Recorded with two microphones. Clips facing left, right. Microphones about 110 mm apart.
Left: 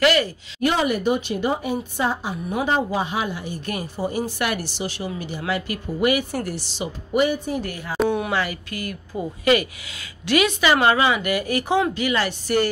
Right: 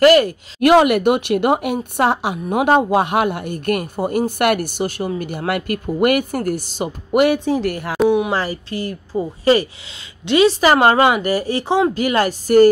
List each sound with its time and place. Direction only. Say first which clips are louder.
0.0 s speech: right 8 dB; 45° right (ahead or behind)
0.6 s speech: right 9 dB; 75° right (ahead or behind)
7.7 s a woman's voice: right 6 dB; 70° right (ahead or behind)
8.3 s speech: right 4 dB; 35° right (ahead or behind)
10.6 s speech: right 5 dB; 40° right (ahead or behind)
11.2 s speech: right 4 dB; 30° right (ahead or behind)
11.9 s speech: right 5 dB; 45° right (ahead or behind)